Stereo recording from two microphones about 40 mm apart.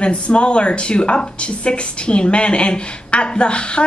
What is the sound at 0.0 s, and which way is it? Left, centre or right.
A woman's voice, left.